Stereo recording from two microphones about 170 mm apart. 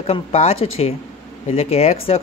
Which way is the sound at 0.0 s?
35° left (ahead or behind).